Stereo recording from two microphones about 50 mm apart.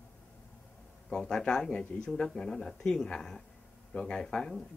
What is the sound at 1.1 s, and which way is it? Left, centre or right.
Speech, centre.